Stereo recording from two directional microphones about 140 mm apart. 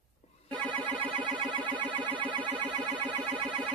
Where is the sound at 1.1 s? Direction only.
35° right (ahead or behind).